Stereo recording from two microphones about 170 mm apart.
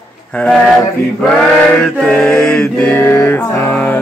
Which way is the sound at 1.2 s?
5° left (ahead or behind).